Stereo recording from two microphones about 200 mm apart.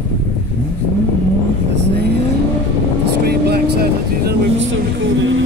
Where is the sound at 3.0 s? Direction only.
55° right (ahead or behind).